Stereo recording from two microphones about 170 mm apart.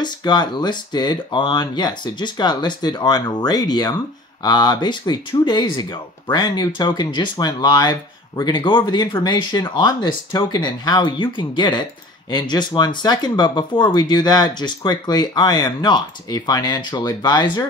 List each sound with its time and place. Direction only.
0.0 s speech: 25° left (ahead or behind)